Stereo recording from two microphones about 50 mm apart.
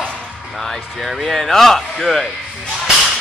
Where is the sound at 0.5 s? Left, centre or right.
Centre.